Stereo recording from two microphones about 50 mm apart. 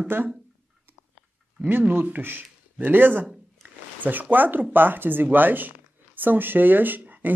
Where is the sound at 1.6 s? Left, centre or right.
Right.